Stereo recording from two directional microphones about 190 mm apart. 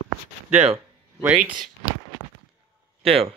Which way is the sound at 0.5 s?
35° right (ahead or behind).